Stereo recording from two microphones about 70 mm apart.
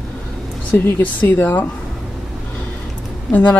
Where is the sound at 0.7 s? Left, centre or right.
Left.